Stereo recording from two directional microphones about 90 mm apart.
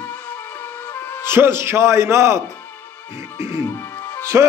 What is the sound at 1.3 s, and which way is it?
A man's voice, 30° right (ahead or behind).